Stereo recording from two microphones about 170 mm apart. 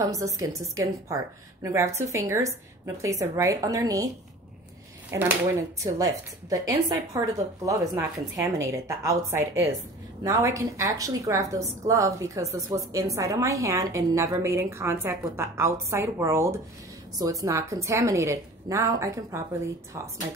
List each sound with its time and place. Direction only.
0.0 s a woman's voice: 20° right (ahead or behind)
5.1 s a woman's voice: 20° right (ahead or behind)
6.5 s a woman's voice: 20° right (ahead or behind)